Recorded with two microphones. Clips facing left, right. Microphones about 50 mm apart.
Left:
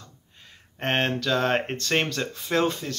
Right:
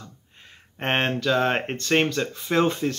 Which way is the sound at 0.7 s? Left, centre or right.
Centre.